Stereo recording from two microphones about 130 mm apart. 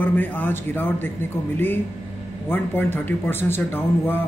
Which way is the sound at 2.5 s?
15° left (ahead or behind).